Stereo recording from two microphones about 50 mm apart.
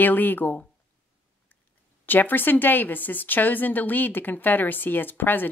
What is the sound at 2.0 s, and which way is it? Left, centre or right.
Speech, left.